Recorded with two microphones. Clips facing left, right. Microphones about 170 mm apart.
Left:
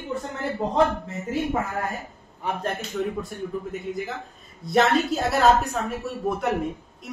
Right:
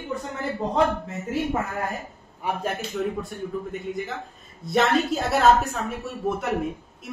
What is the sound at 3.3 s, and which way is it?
Speech, 5° left (ahead or behind).